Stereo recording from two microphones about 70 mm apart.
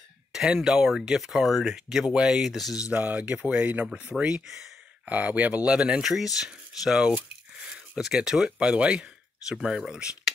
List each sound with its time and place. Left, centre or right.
0.3 s speech: centre
2.8 s speech: right
5.0 s speech: right